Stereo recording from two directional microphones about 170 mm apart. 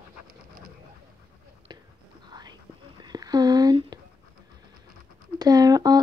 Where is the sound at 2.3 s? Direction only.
25° right (ahead or behind).